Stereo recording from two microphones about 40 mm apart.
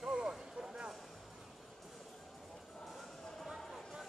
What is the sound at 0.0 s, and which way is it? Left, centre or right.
Vehicle, right.